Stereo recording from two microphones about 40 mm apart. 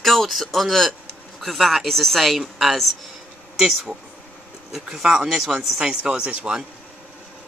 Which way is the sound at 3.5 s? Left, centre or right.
Centre.